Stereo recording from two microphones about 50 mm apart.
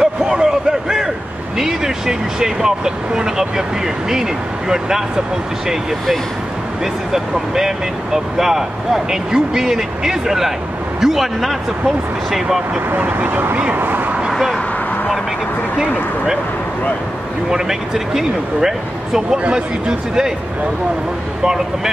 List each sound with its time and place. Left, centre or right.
0.0 s a sound: centre
1.6 s speech: centre
6.8 s a man's voice: centre
12.9 s speech: right
14.3 s a sound: centre
17.5 s speech: centre